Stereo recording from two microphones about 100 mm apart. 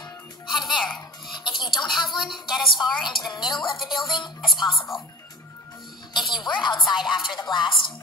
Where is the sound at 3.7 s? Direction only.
Centre (ahead or behind).